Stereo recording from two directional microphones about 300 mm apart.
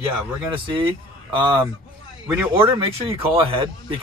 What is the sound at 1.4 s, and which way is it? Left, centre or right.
Speech, centre.